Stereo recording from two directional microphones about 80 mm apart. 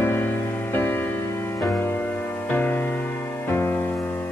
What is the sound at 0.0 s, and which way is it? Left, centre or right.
Music, left.